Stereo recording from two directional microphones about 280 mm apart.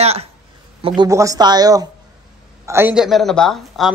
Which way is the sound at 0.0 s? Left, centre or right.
Right.